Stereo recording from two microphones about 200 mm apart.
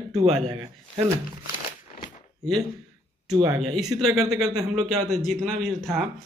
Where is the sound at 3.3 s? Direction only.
20° right (ahead or behind).